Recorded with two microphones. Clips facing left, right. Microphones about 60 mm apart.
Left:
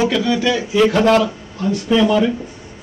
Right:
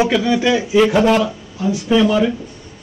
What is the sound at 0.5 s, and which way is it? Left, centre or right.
A man's voice, centre.